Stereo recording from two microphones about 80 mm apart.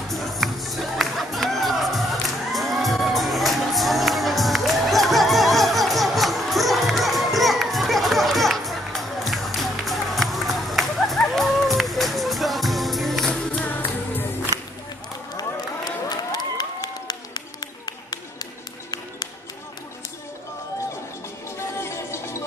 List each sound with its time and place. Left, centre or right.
0.1 s music: centre
15.3 s a sound: left
21.5 s music: left